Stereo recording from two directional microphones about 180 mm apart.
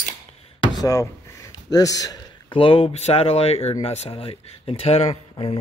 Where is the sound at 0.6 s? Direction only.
20° left (ahead or behind).